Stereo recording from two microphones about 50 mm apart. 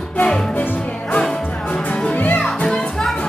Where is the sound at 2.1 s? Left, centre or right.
Left.